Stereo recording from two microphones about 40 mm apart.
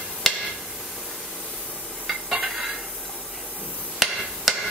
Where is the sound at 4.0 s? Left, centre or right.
Centre.